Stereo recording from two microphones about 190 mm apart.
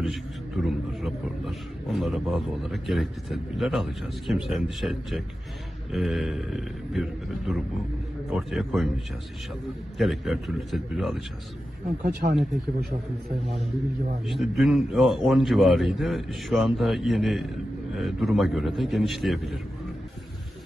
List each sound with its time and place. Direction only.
0.0 s a man's voice: centre (ahead or behind)
9.9 s a man's voice: centre (ahead or behind)
12.0 s speech: 45° right (ahead or behind)
14.2 s a man's voice: centre (ahead or behind)